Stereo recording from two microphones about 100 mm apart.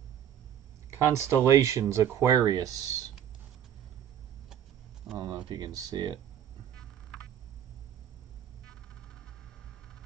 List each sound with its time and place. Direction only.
0.8 s speech: 30° right (ahead or behind)
5.1 s a sound: 45° right (ahead or behind)
5.5 s speech: 45° right (ahead or behind)